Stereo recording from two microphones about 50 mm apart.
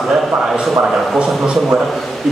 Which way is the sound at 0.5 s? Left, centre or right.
Centre.